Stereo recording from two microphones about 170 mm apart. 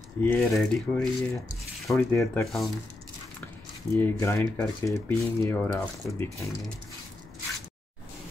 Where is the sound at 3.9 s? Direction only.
15° left (ahead or behind).